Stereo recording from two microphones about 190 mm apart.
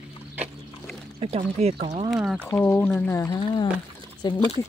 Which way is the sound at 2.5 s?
10° left (ahead or behind).